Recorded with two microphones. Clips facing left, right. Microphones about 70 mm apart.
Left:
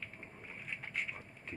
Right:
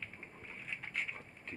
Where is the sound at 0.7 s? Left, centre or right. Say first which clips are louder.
Even; centre.